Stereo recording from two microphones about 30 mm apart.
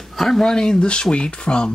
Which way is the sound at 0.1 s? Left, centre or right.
Centre.